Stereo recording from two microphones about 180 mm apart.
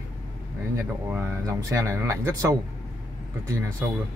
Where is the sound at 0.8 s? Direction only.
15° right (ahead or behind).